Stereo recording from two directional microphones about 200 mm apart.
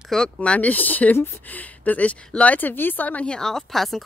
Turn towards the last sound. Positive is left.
turn(degrees=0)  # may be behind; listen again after turning